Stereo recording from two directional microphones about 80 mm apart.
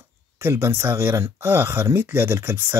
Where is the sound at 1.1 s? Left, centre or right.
Right.